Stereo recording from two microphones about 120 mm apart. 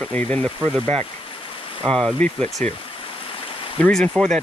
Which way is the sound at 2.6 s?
75° right (ahead or behind).